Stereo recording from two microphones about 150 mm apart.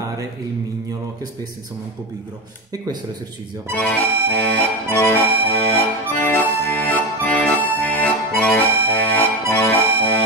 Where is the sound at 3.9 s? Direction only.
10° left (ahead or behind).